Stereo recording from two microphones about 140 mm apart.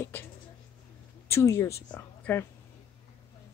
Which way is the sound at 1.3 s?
20° left (ahead or behind).